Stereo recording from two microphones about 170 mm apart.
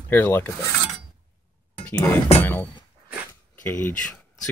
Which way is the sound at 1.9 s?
20° left (ahead or behind).